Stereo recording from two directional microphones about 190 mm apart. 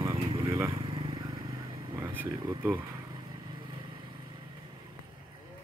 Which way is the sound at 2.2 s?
20° right (ahead or behind).